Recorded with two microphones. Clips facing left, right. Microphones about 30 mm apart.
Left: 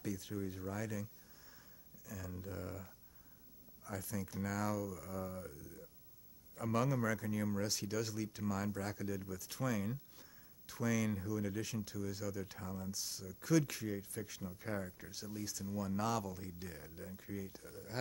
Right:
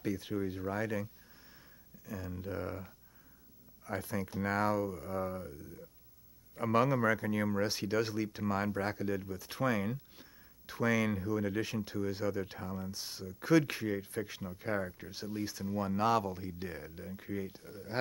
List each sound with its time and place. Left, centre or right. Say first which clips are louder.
0.0 s speech: right 7 dB; right
2.0 s speech: right 6 dB; right